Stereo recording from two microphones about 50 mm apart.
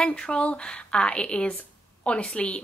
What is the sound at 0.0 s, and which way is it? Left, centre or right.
A woman's voice, left.